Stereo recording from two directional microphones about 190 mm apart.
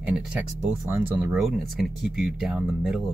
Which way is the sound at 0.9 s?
15° right (ahead or behind).